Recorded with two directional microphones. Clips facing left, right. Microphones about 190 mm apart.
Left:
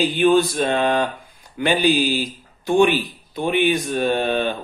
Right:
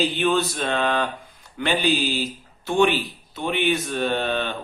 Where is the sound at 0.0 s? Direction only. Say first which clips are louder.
Left 5 dB; 15° left (ahead or behind).